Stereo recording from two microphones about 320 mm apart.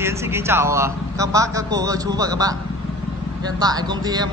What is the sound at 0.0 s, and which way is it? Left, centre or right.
A man's voice, centre.